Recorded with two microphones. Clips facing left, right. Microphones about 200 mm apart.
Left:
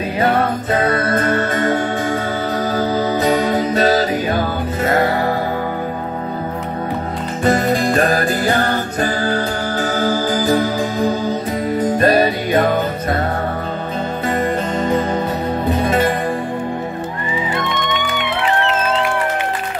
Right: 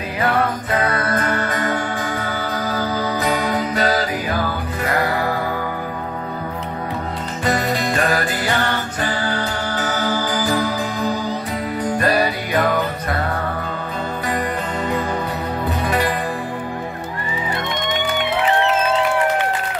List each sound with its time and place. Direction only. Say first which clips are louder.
0.9 s music: left 4 dB; 25° left (ahead or behind)
7.4 s music: left 5 dB; 40° left (ahead or behind)
11.8 s music: left 5 dB; 25° left (ahead or behind)
15.8 s music: left 4 dB; 20° left (ahead or behind)